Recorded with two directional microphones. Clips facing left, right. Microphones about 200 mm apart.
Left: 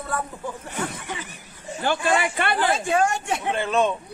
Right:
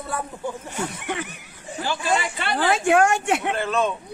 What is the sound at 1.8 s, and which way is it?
Speech, 55° left (ahead or behind).